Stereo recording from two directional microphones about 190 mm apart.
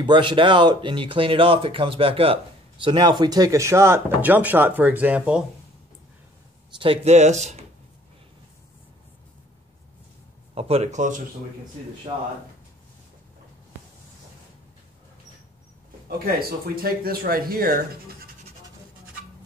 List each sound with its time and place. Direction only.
0.0 s speech: 25° right (ahead or behind); by 5.4 s 5° right (ahead or behind)
6.7 s speech: 30° right (ahead or behind)
10.5 s speech: 30° right (ahead or behind)
12.1 s speech: 25° right (ahead or behind)
16.3 s speech: 55° right (ahead or behind)